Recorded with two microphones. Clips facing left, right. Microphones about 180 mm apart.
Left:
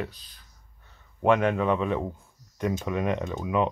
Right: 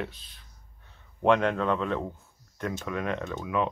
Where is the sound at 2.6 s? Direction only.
15° left (ahead or behind).